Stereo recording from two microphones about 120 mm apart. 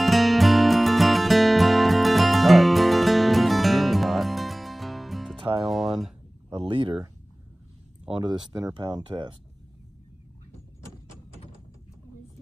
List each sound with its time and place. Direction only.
0.0 s music: centre (ahead or behind)
6.6 s a sound: 45° right (ahead or behind)
8.6 s speech: 35° right (ahead or behind)